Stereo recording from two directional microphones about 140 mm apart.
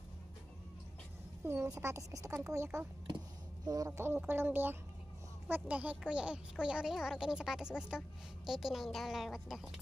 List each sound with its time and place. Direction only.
1.4 s a woman's voice: 20° right (ahead or behind); by 9.8 s centre (ahead or behind)